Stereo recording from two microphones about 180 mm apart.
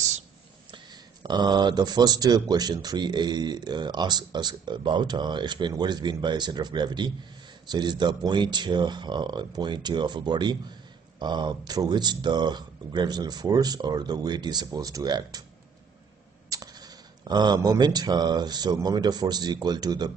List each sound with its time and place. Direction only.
1.2 s speech: 25° right (ahead or behind)
16.4 s speech: 20° right (ahead or behind)